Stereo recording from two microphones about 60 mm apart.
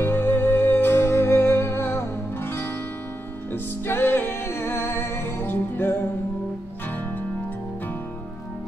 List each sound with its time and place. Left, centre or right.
0.0 s music: left